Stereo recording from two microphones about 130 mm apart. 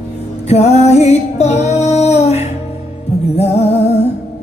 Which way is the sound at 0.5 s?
55° left (ahead or behind).